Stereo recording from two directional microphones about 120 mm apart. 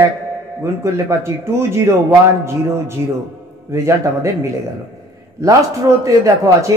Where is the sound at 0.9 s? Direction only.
25° right (ahead or behind).